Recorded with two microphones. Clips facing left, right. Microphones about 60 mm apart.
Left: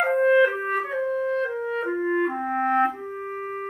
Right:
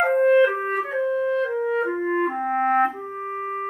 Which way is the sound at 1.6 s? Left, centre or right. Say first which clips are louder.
Right 3 dB; centre.